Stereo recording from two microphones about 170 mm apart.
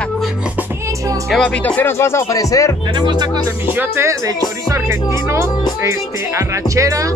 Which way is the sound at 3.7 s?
15° right (ahead or behind).